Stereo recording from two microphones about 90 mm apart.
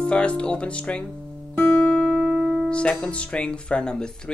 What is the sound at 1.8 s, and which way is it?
Guitar, 10° left (ahead or behind).